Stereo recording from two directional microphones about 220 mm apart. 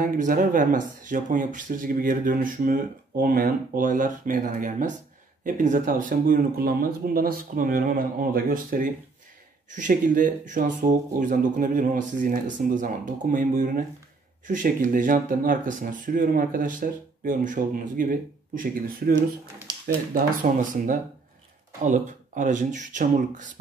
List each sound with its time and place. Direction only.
0.0 s speech: 40° right (ahead or behind)
20.4 s speech: 40° right (ahead or behind)
21.8 s speech: 35° right (ahead or behind)